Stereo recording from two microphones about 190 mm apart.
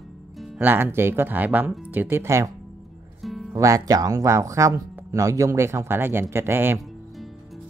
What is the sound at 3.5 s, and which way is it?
Speech, 15° right (ahead or behind).